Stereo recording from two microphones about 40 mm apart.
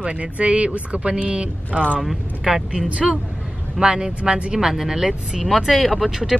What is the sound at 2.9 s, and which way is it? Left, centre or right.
Speech, right.